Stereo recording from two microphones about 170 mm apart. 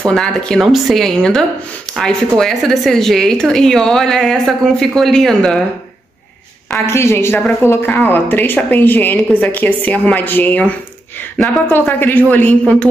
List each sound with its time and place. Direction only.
0.0 s speech: 5° left (ahead or behind)
6.9 s a woman's voice: 15° left (ahead or behind)